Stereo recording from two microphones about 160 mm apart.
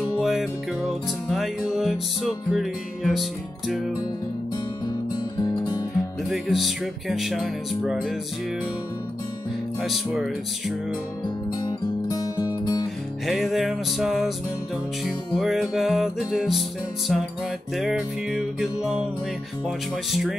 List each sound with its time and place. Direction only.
0.2 s music: centre (ahead or behind)
6.2 s music: centre (ahead or behind)
9.8 s music: centre (ahead or behind)
11.2 s music: 25° left (ahead or behind)
13.3 s music: centre (ahead or behind)
20.1 s music: centre (ahead or behind)